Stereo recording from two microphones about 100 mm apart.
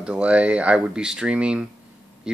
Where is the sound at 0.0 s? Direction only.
10° right (ahead or behind).